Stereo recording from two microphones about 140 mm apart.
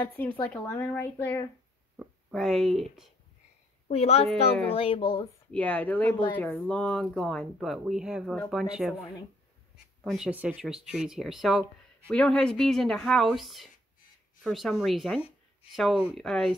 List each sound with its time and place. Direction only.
0.0 s a woman's voice: 10° left (ahead or behind)
2.0 s speech: centre (ahead or behind)
3.8 s a woman's voice: 45° left (ahead or behind)
5.5 s a woman's voice: 10° left (ahead or behind); by 8.9 s 5° right (ahead or behind)
10.0 s speech: 5° right (ahead or behind)